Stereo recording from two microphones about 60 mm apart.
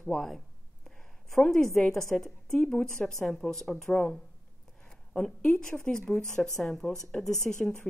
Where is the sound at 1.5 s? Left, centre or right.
Centre.